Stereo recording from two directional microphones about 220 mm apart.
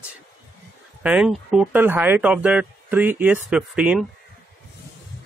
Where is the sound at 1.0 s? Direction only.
5° right (ahead or behind).